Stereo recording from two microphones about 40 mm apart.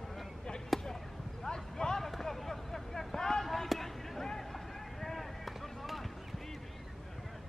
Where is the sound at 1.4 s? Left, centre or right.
Centre.